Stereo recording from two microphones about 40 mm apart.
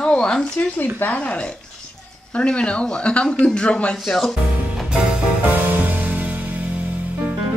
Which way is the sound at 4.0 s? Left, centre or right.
Centre.